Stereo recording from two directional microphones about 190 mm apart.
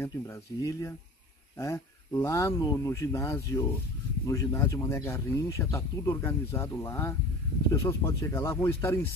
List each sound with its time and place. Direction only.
0.0 s speech: 15° left (ahead or behind)